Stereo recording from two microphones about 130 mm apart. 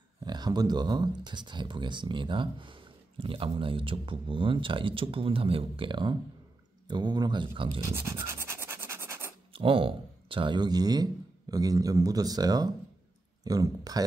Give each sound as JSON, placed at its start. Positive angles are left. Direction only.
{"t": 0.2, "sound": "speech", "side_deg": -35}
{"t": 7.8, "sound": "speech", "side_deg": -20}
{"t": 8.3, "sound": "scratch", "side_deg": -20}
{"t": 9.5, "sound": "speech", "side_deg": -45}